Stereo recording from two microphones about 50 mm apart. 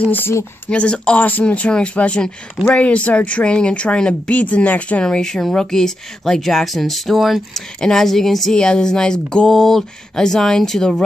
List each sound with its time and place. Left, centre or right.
0.7 s speech: left
5.0 s speech: centre